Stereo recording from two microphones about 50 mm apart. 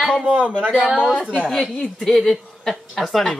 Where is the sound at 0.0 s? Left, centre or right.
Centre.